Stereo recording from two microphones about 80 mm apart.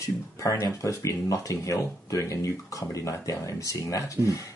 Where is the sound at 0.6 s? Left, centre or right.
Left.